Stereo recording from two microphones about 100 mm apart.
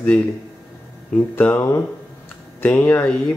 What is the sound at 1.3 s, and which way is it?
Speech, 20° left (ahead or behind).